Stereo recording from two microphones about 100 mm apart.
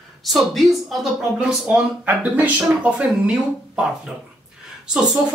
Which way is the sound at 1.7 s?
15° right (ahead or behind).